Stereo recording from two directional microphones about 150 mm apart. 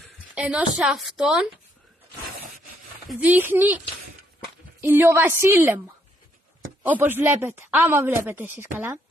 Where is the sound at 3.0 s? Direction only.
10° right (ahead or behind).